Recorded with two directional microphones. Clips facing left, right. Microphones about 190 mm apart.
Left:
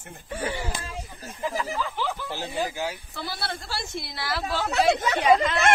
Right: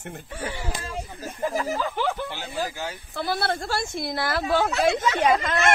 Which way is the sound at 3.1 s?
55° right (ahead or behind).